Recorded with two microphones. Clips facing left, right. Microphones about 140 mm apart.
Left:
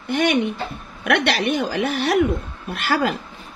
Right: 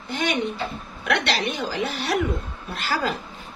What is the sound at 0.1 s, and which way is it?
A woman's voice, 60° left (ahead or behind).